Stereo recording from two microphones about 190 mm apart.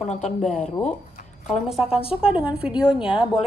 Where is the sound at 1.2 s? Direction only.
35° left (ahead or behind).